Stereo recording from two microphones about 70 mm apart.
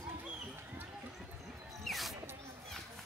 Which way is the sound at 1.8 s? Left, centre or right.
Centre.